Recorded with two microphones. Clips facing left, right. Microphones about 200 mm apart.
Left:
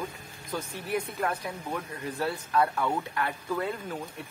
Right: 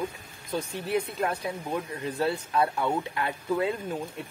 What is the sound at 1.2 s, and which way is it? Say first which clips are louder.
Speech: right 2 dB; 25° right (ahead or behind).